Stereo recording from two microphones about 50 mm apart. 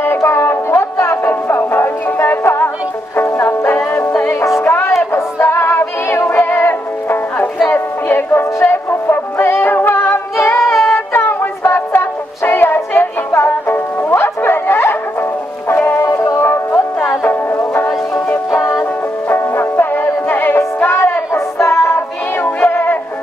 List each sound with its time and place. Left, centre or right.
0.0 s music: left
10.3 s a capella: left
11.1 s music: left
16.3 s music: left
17.2 s music: left
18.6 s music: centre
19.2 s music: left
21.3 s music: left
22.4 s synthetic singing: left